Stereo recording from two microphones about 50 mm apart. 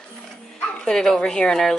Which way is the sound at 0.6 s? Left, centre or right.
Left.